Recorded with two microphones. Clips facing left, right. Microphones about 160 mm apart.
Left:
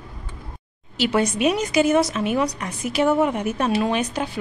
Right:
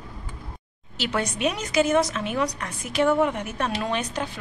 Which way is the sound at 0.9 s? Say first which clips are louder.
Left 7 dB; 10° left (ahead or behind).